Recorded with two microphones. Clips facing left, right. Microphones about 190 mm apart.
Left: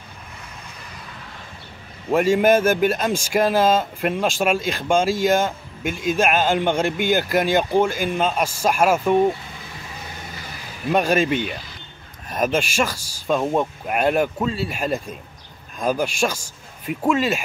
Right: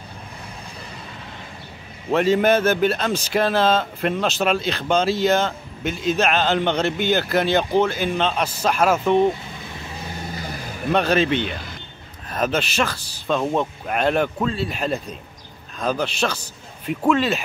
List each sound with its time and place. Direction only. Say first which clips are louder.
2.0 s speech: left 1 dB; 10° left (ahead or behind)
10.9 s speech: even; 10° left (ahead or behind)